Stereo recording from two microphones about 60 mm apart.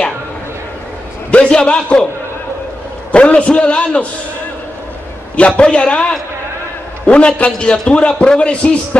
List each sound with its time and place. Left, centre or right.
1.3 s a man's voice: centre
3.1 s a man's voice: left
5.6 s a man's voice: centre